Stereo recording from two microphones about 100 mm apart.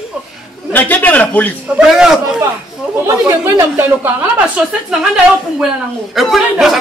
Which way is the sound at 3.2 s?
25° right (ahead or behind).